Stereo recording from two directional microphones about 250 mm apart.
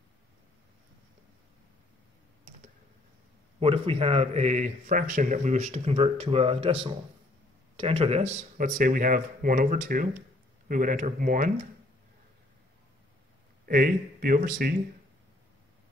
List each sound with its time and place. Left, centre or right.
3.5 s a man's voice: right
13.7 s speech: right